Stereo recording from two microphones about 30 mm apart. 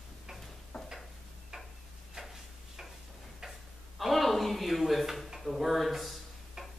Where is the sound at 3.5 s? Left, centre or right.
Centre.